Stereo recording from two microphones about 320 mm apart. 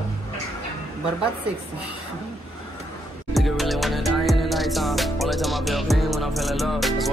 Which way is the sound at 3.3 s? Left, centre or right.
Centre.